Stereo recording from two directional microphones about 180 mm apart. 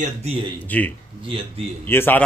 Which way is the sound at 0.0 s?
35° right (ahead or behind).